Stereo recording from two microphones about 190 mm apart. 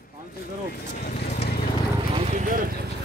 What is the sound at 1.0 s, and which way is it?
Vehicle, 45° left (ahead or behind).